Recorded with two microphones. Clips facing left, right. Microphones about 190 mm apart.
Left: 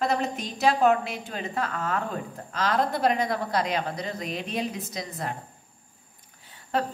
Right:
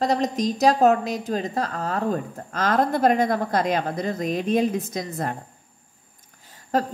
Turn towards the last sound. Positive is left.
turn(degrees=-40)  # may be behind; listen again after turning